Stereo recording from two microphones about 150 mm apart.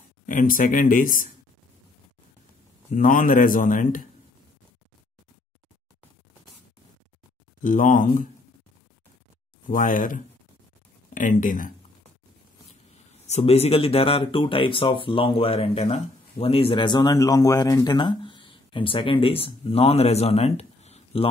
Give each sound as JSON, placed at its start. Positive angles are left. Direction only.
{"t": 0.3, "sound": "a man's voice", "side_deg": 65}
{"t": 2.9, "sound": "a man's voice", "side_deg": 65}
{"t": 7.6, "sound": "a man's voice", "side_deg": 60}
{"t": 9.7, "sound": "a man's voice", "side_deg": 65}
{"t": 13.3, "sound": "speech", "side_deg": 40}